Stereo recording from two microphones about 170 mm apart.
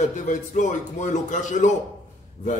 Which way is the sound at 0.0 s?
45° left (ahead or behind).